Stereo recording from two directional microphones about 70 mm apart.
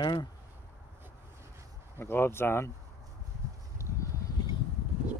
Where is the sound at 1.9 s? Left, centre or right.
Left.